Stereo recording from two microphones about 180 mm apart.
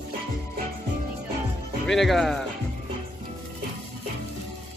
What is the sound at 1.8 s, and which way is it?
Speech, centre (ahead or behind).